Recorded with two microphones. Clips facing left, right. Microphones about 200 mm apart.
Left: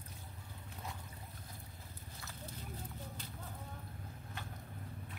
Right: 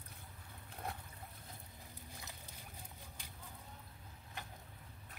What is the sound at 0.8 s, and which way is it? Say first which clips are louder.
Trickle: right 3 dB; 60° right (ahead or behind).